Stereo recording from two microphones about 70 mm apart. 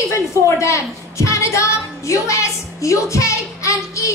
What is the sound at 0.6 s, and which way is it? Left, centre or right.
A woman's voice, left.